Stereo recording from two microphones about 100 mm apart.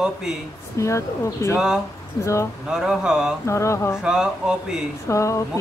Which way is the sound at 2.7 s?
5° right (ahead or behind).